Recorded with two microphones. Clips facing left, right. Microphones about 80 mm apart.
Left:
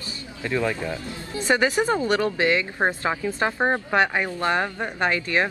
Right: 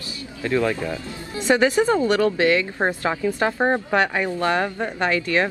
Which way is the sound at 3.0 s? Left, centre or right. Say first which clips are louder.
Right 3 dB; centre.